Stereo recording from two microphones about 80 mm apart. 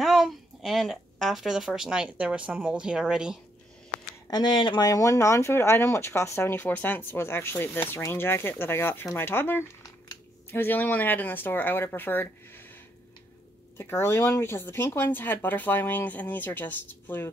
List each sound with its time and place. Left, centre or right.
0.0 s speech: centre
4.3 s speech: left
13.7 s speech: left